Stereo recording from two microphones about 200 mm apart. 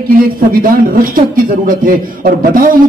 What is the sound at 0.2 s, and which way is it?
A man's voice, 45° right (ahead or behind).